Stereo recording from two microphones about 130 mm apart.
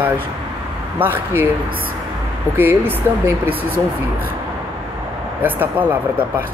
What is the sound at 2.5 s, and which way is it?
Speech, 15° right (ahead or behind).